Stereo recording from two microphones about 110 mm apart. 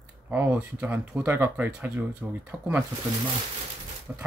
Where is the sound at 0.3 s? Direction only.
15° right (ahead or behind).